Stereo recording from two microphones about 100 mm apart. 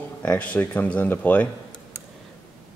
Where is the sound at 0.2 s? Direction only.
15° left (ahead or behind).